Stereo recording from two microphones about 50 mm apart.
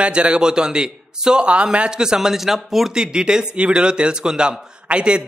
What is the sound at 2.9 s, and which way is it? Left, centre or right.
A man's voice, centre.